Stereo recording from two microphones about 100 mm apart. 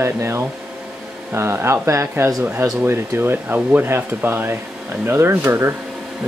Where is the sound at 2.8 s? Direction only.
20° right (ahead or behind).